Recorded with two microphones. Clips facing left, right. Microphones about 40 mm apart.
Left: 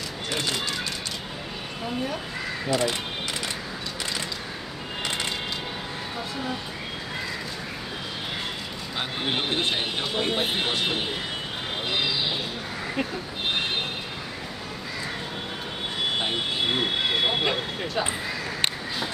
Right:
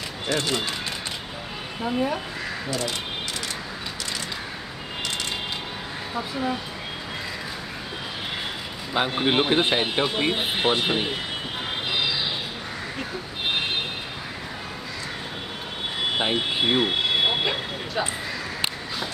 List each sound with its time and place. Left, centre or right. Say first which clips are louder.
8.9 s speech: right 7 dB; right
16.2 s speech: right 3 dB; centre
16.8 s a sound: right 2 dB; centre